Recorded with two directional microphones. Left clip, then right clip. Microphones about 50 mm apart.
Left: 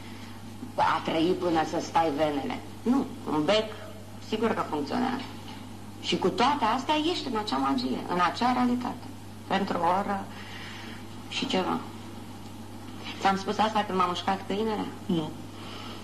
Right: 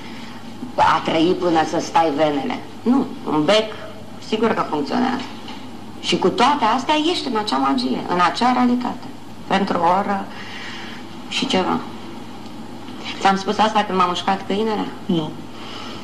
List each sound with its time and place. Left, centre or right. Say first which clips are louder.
0.7 s a man's voice: right 9 dB; right
2.9 s a man's voice: right 8 dB; right
6.0 s a woman's voice: right 9 dB; right
11.2 s a woman's voice: right 9 dB; right
13.0 s a woman's voice: right 9 dB; right
14.5 s a man's voice: right 8 dB; right